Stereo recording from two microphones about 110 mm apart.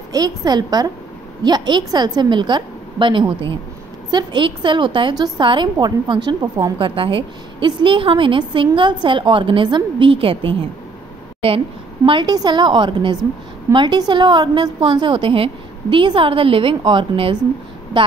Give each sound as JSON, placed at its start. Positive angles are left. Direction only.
{"t": 0.1, "sound": "a woman's voice", "side_deg": -35}
{"t": 12.1, "sound": "a woman's voice", "side_deg": -45}